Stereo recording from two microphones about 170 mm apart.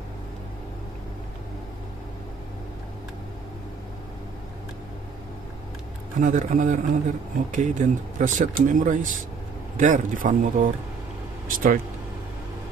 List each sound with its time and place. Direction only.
6.1 s speech: 50° right (ahead or behind)